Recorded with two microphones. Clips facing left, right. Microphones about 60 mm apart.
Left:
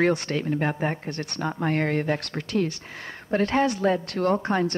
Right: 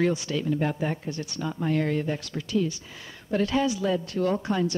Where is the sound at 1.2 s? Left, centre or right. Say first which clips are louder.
Left 3 dB; left.